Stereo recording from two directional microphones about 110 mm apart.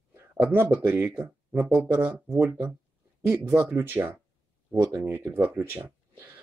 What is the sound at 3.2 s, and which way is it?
Speech, 20° right (ahead or behind).